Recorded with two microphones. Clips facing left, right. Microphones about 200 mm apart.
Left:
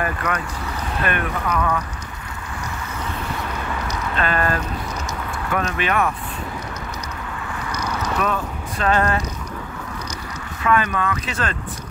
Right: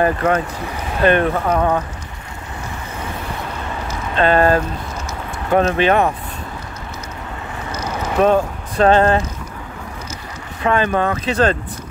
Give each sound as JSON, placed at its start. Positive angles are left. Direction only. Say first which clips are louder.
{"t": 0.0, "sound": "speech", "louder": "right 8 dB", "side_deg": -25}
{"t": 4.2, "sound": "speech", "louder": "right 9 dB", "side_deg": -30}
{"t": 7.9, "sound": "vehicle", "louder": "right 9 dB", "side_deg": -30}
{"t": 10.6, "sound": "speech", "louder": "right 4 dB", "side_deg": -30}